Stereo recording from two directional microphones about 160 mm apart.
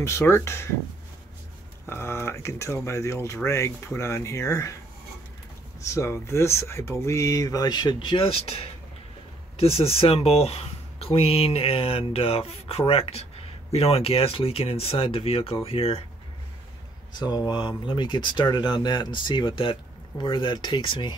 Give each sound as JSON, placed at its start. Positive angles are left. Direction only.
{"t": 0.0, "sound": "speech", "side_deg": 15}
{"t": 1.9, "sound": "speech", "side_deg": 15}
{"t": 5.8, "sound": "speech", "side_deg": 20}
{"t": 17.1, "sound": "speech", "side_deg": 25}